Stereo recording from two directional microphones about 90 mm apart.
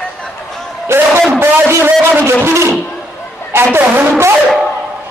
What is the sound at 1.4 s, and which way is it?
Speech, 30° right (ahead or behind).